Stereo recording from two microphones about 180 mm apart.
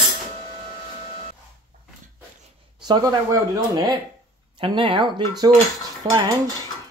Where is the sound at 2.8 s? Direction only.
20° right (ahead or behind).